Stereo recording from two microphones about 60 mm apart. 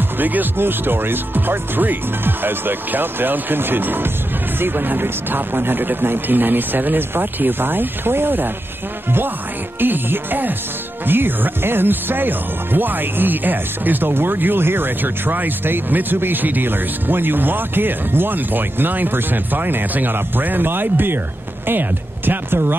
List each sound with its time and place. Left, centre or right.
0.2 s speech: right
9.8 s speech: right